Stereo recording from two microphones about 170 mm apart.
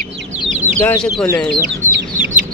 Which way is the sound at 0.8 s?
5° left (ahead or behind).